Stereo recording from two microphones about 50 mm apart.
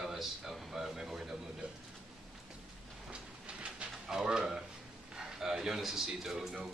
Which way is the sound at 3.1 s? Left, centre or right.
Right.